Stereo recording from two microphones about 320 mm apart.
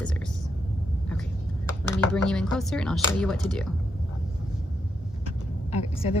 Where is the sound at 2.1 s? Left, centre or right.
Centre.